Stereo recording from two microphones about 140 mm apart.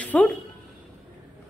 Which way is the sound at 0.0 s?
10° left (ahead or behind).